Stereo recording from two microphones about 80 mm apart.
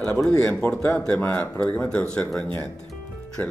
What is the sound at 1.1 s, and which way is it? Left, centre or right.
Speech, centre.